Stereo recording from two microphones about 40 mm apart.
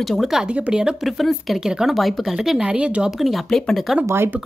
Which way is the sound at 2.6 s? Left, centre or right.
Right.